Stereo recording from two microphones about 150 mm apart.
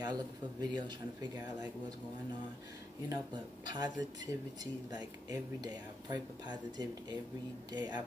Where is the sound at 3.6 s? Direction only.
25° right (ahead or behind).